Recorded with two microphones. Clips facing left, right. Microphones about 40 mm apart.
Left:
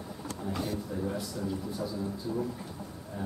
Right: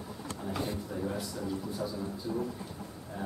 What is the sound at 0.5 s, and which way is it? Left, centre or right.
Speech, centre.